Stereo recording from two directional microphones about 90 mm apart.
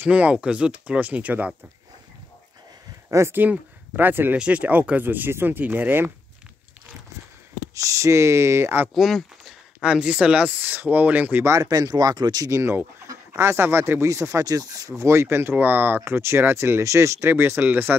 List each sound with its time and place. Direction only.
0.0 s speech: 15° right (ahead or behind)
3.1 s speech: 30° right (ahead or behind)
7.7 s speech: 35° right (ahead or behind)
8.9 s a sound: centre (ahead or behind)
9.8 s speech: 10° right (ahead or behind)
11.5 s speech: 45° right (ahead or behind)
15.0 s speech: 30° right (ahead or behind)